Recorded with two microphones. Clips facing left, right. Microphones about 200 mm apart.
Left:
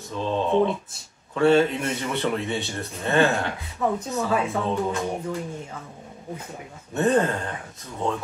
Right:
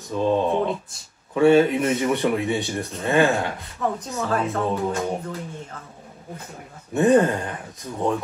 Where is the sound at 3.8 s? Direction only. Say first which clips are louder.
Left 2 dB; 5° left (ahead or behind).